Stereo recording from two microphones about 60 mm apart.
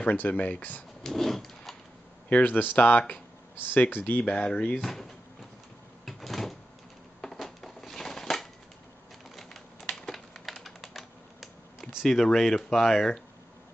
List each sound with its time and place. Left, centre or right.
0.0 s speech: left
1.0 s dog: centre
2.2 s speech: left
4.8 s speech: centre
6.0 s door: centre
7.3 s a sound: centre
9.9 s typing: centre